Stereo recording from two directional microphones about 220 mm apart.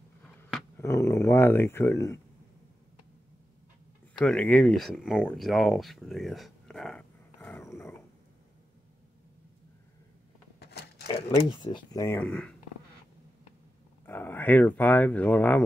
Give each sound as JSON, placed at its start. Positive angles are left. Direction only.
{"t": 0.7, "sound": "speech", "side_deg": 10}
{"t": 4.2, "sound": "speech", "side_deg": 5}
{"t": 10.6, "sound": "a sound", "side_deg": 45}
{"t": 11.2, "sound": "speech", "side_deg": 25}
{"t": 14.0, "sound": "speech", "side_deg": 10}